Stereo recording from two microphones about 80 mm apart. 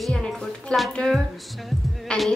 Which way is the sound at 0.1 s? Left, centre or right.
Centre.